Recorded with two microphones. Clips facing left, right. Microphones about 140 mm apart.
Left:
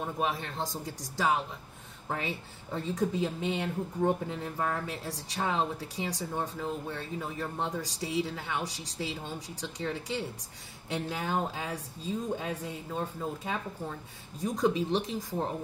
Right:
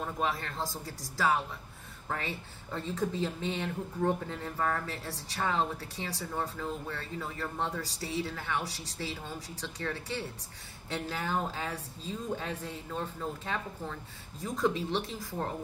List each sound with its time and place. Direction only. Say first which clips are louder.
0.0 s speech: left 1 dB; 15° left (ahead or behind)